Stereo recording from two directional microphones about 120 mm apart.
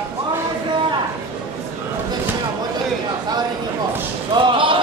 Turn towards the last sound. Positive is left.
turn(degrees=-45)  # may be behind; listen again after turning